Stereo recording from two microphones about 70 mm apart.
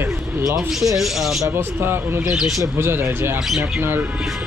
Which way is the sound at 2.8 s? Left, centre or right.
Right.